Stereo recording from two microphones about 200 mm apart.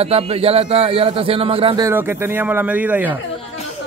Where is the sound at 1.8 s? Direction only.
10° right (ahead or behind).